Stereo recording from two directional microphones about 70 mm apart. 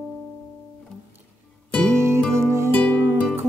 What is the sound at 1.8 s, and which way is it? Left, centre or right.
Music, right.